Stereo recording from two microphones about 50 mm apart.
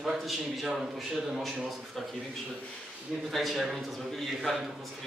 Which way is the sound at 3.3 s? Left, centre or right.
Centre.